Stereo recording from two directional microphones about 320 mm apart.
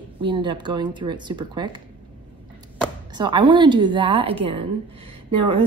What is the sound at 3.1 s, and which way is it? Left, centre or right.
A woman's voice, centre.